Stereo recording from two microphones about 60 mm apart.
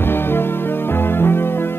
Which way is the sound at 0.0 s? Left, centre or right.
Left.